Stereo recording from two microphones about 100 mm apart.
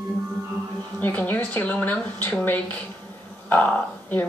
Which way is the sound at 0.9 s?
15° left (ahead or behind).